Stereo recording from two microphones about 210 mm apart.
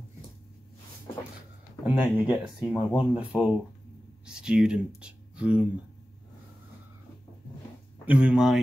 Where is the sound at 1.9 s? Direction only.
25° left (ahead or behind).